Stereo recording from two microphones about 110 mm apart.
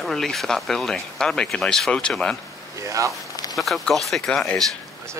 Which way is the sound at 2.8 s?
30° right (ahead or behind).